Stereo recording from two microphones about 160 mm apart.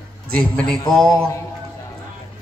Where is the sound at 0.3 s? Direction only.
5° left (ahead or behind).